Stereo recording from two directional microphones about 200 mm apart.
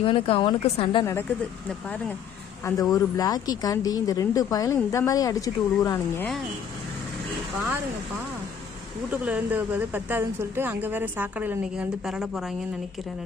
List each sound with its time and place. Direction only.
0.0 s a woman's voice: 25° left (ahead or behind)
1.7 s speech: 5° left (ahead or behind)
2.6 s speech: 20° left (ahead or behind)
9.1 s speech: 5° right (ahead or behind)